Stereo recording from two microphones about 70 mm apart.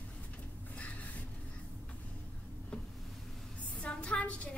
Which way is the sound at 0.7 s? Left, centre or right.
Left.